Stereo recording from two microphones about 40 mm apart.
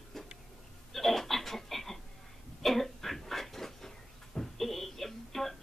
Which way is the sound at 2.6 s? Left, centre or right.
Centre.